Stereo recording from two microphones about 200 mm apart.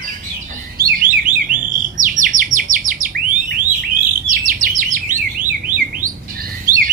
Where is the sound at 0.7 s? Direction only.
45° right (ahead or behind).